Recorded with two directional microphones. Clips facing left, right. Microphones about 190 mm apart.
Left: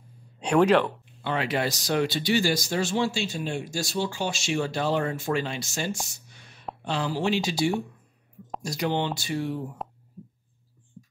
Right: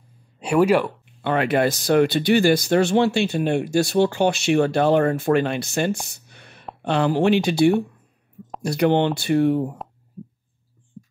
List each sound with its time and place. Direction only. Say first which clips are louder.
0.4 s speech: right 2 dB; 5° right (ahead or behind)
1.2 s speech: right 7 dB; 55° right (ahead or behind)